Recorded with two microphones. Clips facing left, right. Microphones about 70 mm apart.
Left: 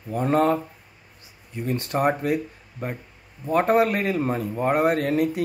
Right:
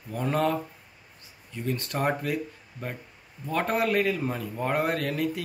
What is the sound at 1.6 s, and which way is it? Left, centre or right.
Speech, left.